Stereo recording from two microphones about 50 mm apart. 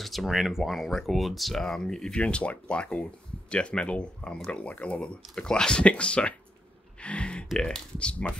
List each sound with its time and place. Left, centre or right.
0.0 s speech: centre
2.1 s speech: left
7.0 s gasp: left
7.5 s speech: centre